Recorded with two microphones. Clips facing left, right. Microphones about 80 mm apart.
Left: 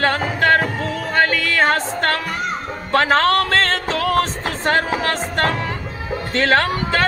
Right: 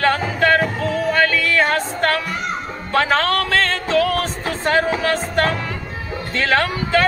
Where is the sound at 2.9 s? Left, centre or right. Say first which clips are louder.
Left 2 dB; left.